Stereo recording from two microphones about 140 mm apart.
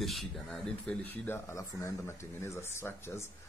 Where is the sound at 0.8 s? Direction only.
10° left (ahead or behind).